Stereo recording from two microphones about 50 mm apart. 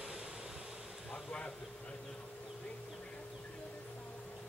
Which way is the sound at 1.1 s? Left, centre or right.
Centre.